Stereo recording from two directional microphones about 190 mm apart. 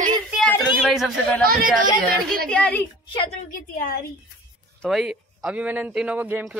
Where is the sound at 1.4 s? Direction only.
50° right (ahead or behind).